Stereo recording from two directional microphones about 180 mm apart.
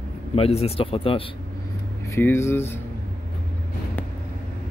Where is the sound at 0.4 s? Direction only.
35° left (ahead or behind).